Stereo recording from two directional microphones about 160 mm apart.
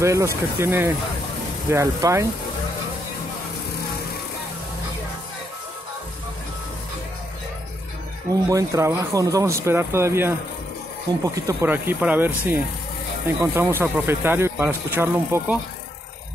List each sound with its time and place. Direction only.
0.0 s speech: 20° right (ahead or behind)
8.3 s speech: 20° right (ahead or behind)
11.3 s speech: 15° right (ahead or behind)